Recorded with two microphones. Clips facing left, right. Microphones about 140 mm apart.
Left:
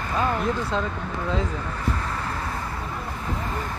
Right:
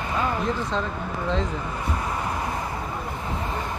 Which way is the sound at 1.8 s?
15° right (ahead or behind).